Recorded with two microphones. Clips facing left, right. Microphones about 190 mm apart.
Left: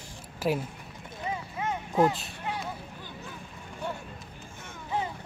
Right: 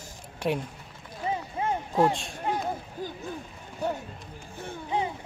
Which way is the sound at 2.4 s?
45° right (ahead or behind).